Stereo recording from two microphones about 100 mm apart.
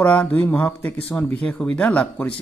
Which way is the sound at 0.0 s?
15° left (ahead or behind).